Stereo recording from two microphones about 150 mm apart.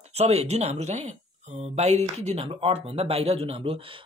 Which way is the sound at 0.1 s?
45° right (ahead or behind).